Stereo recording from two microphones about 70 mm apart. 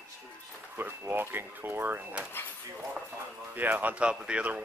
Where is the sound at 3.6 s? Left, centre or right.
Right.